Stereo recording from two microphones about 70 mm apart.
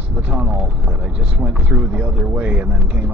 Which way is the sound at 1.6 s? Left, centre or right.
Right.